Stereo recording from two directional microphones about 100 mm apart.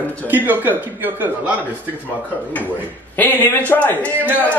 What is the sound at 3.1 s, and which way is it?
Speech, 20° left (ahead or behind).